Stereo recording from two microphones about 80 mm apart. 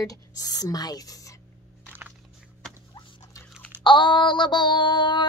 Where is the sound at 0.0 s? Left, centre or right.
Left.